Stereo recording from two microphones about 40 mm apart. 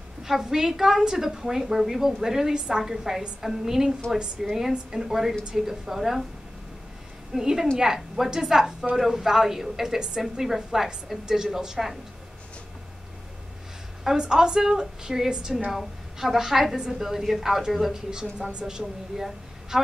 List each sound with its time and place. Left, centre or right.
0.2 s a woman's voice: centre
7.3 s a woman's voice: centre
14.1 s a woman's voice: right
18.5 s a woman's voice: right